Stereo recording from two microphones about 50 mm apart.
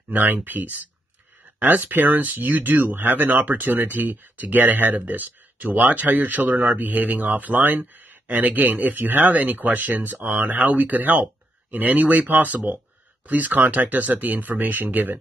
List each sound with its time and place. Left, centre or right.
0.1 s speech: right